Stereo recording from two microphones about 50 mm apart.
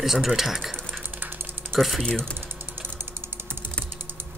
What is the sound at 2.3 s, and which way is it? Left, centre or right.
Mechanisms, right.